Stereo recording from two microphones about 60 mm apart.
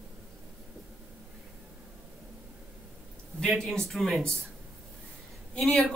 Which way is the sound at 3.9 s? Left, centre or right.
Centre.